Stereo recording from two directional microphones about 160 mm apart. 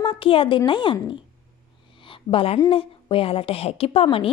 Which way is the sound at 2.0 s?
35° left (ahead or behind).